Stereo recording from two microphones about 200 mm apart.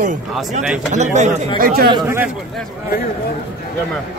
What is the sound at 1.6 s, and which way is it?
Speech, 50° right (ahead or behind).